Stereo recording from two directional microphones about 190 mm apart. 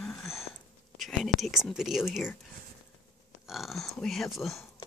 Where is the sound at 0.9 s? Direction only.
Centre (ahead or behind).